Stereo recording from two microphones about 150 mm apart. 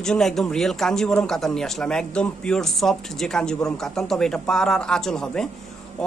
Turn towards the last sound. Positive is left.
turn(degrees=5)  # may be behind; listen again after turning